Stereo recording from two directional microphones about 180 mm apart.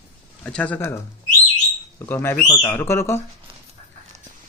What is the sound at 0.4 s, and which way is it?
Speech, 10° left (ahead or behind).